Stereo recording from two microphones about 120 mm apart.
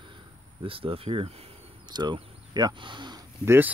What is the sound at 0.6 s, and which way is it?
Speech, 50° right (ahead or behind).